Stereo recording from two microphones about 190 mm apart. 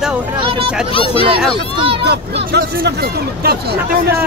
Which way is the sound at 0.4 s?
25° right (ahead or behind).